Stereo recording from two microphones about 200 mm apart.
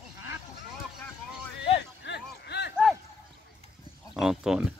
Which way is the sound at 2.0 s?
55° left (ahead or behind).